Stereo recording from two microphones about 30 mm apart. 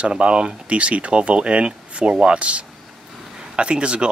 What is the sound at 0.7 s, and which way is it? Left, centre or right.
Speech, right.